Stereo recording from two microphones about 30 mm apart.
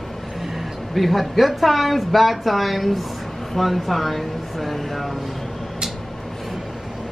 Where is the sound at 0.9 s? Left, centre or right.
Centre.